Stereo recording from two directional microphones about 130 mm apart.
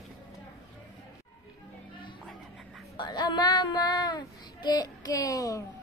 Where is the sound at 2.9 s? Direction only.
35° left (ahead or behind).